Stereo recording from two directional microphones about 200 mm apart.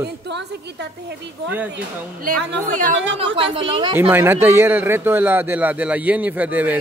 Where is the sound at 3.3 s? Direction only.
25° right (ahead or behind).